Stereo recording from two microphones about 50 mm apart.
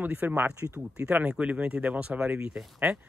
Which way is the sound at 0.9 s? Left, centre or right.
Right.